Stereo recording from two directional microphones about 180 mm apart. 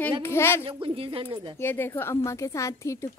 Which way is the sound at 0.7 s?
30° right (ahead or behind).